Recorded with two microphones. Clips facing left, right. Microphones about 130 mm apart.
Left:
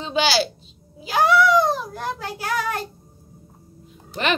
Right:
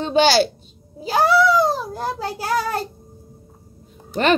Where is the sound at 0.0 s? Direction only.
45° right (ahead or behind).